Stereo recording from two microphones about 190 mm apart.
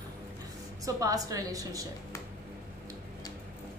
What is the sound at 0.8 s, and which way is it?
A woman's voice, 15° right (ahead or behind).